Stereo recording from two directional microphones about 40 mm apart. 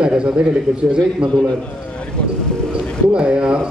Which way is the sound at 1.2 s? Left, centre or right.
Right.